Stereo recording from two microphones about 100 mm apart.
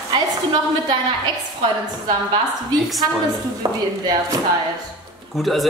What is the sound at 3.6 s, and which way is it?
Speech, 50° right (ahead or behind).